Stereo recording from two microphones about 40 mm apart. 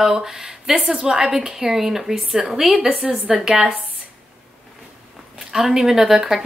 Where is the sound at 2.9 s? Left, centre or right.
Right.